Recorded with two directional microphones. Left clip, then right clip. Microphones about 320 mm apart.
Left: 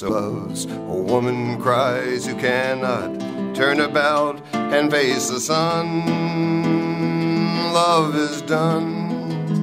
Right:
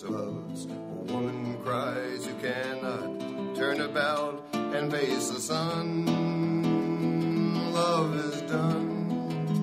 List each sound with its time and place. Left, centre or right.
1.2 s music: left